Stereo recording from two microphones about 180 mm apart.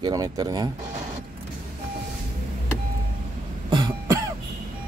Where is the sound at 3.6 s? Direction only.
20° right (ahead or behind).